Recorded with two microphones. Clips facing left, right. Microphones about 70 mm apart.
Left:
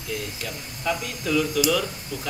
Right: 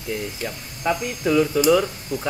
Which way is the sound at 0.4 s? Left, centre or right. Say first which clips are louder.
Right 4 dB; right.